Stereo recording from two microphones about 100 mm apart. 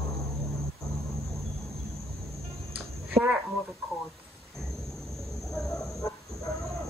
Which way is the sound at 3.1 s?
20° right (ahead or behind).